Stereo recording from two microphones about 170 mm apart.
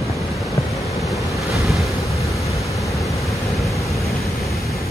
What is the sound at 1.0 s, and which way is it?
Waves, centre (ahead or behind).